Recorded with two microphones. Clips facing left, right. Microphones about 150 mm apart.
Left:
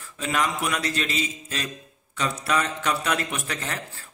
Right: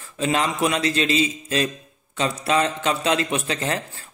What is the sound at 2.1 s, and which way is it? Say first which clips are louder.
A man's voice: right 4 dB; 25° right (ahead or behind).